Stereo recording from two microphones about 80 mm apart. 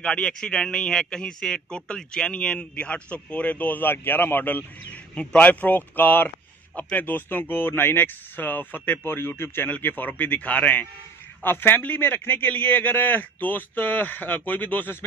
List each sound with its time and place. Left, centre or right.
0.0 s a man's voice: centre
5.1 s speech: centre